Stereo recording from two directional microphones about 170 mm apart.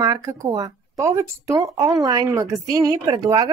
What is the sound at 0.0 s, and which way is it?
Speech, 20° right (ahead or behind).